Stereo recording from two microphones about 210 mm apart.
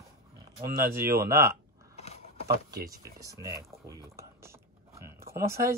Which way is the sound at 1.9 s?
30° left (ahead or behind).